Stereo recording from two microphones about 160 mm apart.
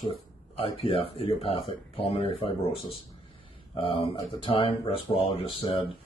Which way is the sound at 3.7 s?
35° left (ahead or behind).